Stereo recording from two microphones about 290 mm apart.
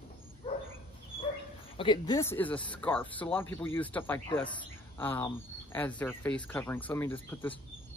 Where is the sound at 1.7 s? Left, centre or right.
Centre.